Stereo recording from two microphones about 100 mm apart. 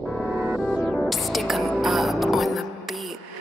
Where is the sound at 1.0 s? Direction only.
Centre (ahead or behind).